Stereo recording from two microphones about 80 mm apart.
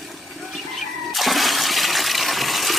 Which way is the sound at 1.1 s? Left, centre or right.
Centre.